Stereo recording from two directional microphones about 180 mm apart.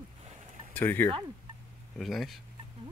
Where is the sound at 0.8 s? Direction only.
10° left (ahead or behind).